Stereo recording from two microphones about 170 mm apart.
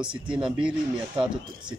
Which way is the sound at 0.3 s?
5° right (ahead or behind).